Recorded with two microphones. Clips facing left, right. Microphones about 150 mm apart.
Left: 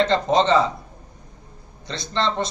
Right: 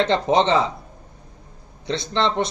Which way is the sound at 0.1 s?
20° right (ahead or behind).